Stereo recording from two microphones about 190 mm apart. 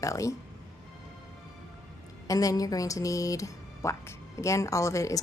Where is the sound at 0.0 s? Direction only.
15° left (ahead or behind).